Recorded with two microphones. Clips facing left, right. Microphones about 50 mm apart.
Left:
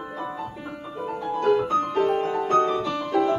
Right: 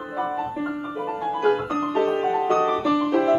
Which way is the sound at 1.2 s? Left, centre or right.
Right.